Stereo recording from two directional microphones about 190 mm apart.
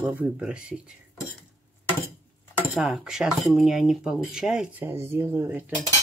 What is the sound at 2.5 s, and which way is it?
Speech, centre (ahead or behind).